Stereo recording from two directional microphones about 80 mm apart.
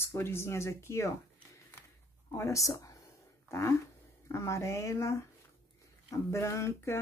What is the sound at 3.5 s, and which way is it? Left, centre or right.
Speech, left.